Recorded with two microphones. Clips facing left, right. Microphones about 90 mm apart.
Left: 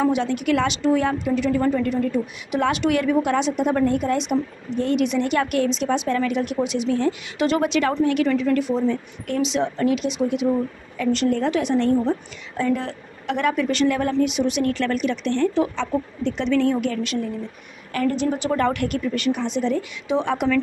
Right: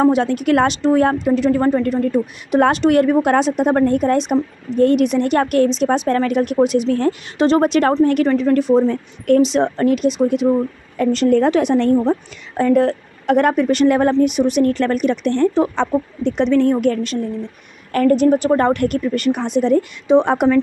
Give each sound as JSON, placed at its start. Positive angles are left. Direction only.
{"t": 0.0, "sound": "a woman's voice", "side_deg": -45}
{"t": 7.3, "sound": "a woman's voice", "side_deg": -35}
{"t": 12.0, "sound": "a woman's voice", "side_deg": -45}